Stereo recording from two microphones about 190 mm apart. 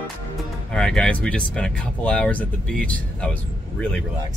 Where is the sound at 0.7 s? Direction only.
5° left (ahead or behind).